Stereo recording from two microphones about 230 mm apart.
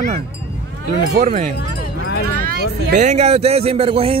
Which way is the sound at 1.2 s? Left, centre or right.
Right.